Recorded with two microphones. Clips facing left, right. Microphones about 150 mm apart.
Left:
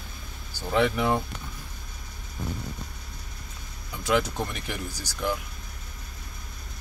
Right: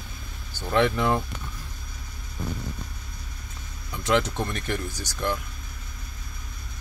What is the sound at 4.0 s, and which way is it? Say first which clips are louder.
Speech: right 1 dB; 10° left (ahead or behind).